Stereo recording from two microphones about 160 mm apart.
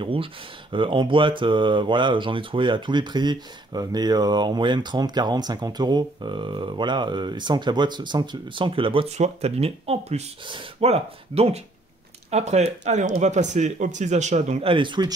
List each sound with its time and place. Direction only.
0.0 s speech: 35° right (ahead or behind)